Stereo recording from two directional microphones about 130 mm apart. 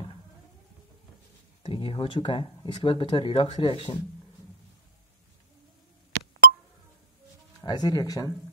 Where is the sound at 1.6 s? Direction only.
40° left (ahead or behind).